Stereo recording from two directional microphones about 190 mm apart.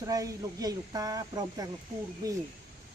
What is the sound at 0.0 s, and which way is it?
Speech, 20° right (ahead or behind).